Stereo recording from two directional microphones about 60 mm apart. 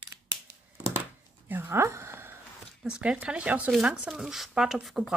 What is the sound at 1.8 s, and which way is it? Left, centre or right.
Speech, right.